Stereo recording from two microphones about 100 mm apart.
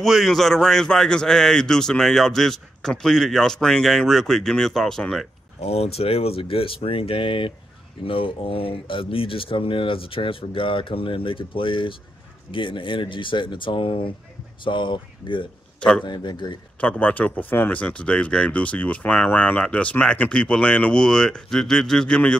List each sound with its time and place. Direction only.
0.0 s a man's voice: centre (ahead or behind)
5.6 s speech: 90° left; by 16.5 s 50° left (ahead or behind)
16.8 s speech: 15° left (ahead or behind)